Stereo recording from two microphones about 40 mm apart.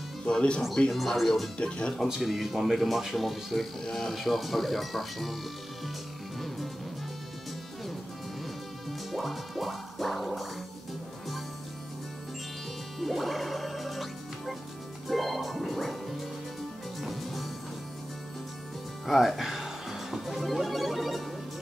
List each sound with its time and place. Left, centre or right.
0.2 s speech: left
0.9 s speech: centre
1.6 s speech: left
2.2 s speech: centre
9.1 s music: centre
13.0 s music: centre
19.0 s music: centre